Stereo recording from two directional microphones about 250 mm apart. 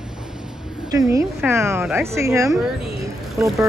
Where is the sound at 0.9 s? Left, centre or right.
Centre.